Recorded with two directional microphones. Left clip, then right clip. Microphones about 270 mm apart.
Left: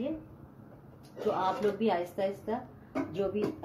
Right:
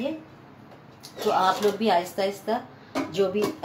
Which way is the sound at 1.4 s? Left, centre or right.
Right.